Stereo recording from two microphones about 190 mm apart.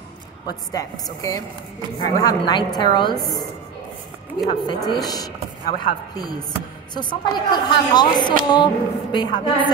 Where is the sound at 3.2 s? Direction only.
Centre (ahead or behind).